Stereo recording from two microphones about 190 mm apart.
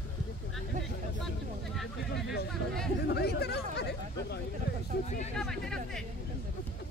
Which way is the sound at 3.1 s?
60° left (ahead or behind).